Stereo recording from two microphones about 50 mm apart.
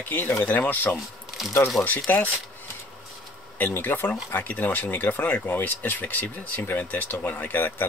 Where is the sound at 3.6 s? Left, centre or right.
Left.